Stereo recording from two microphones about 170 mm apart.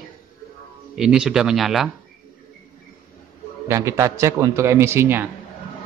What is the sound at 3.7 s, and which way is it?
A man's voice, 15° right (ahead or behind).